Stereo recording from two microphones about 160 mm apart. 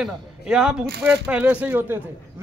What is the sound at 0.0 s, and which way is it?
Speech, 5° right (ahead or behind).